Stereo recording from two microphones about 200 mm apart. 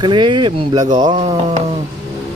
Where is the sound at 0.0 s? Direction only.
25° right (ahead or behind).